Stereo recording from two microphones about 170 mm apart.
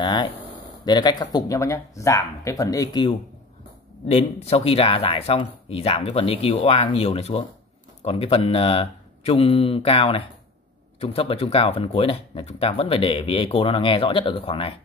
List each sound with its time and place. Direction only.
0.0 s a sound: 25° left (ahead or behind)
0.8 s speech: 25° left (ahead or behind)
4.1 s speech: 35° left (ahead or behind)